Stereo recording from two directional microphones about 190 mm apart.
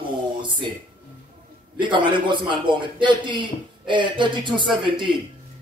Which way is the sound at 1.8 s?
25° right (ahead or behind).